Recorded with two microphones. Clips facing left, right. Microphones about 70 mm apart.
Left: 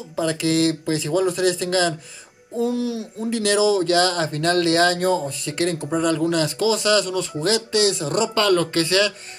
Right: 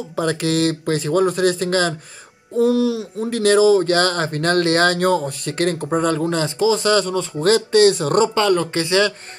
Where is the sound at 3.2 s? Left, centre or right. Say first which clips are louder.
Right 5 dB; right.